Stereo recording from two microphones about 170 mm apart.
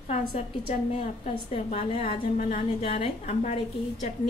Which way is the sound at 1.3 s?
35° left (ahead or behind).